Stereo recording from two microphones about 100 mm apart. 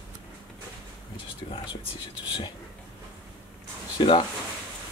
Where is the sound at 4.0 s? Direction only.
60° left (ahead or behind).